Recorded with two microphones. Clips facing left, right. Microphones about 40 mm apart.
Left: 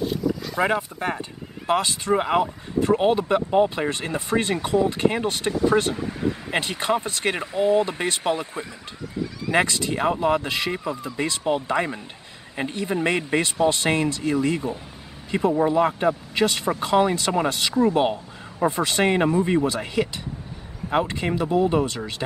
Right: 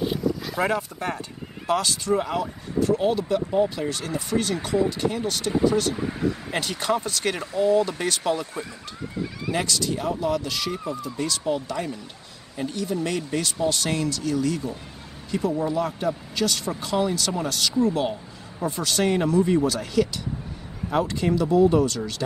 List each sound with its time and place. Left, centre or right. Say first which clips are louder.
0.3 s a sound: left 1 dB; centre
0.7 s speech: left 2 dB; left
5.9 s speech: right 1 dB; centre
6.5 s speech: left 4 dB; left
9.1 s speech: left 2 dB; centre
9.5 s speech: left 4 dB; left